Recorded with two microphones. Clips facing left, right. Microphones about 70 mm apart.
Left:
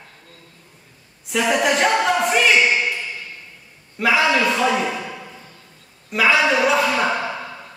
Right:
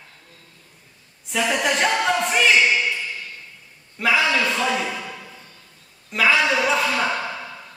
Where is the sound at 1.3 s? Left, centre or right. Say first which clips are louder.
Left 3 dB; centre.